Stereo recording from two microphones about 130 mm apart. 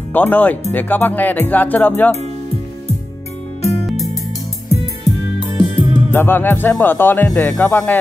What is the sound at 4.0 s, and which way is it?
Music, 25° left (ahead or behind).